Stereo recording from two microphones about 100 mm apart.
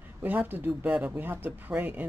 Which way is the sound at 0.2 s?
20° right (ahead or behind).